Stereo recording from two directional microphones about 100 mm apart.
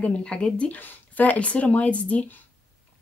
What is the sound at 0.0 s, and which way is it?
Speech, 10° left (ahead or behind).